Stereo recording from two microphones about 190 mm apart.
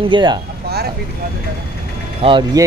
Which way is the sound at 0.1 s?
25° right (ahead or behind).